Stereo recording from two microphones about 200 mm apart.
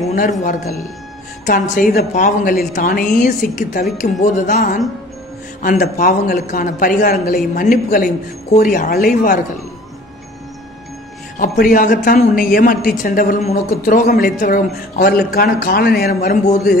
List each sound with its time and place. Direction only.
0.1 s a woman's voice: 40° left (ahead or behind)
11.3 s a woman's voice: 45° left (ahead or behind)